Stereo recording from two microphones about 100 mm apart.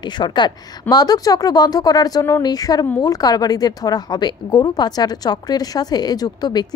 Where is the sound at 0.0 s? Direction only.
45° left (ahead or behind).